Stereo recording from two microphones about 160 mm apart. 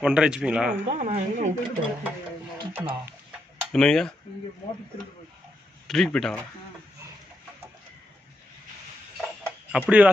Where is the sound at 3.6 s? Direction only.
5° left (ahead or behind).